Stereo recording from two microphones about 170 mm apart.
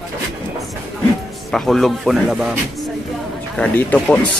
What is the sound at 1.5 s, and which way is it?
Speech, centre (ahead or behind).